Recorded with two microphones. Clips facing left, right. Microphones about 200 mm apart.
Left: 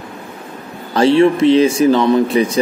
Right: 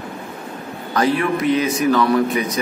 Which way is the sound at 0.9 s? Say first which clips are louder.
Left 8 dB; 25° left (ahead or behind).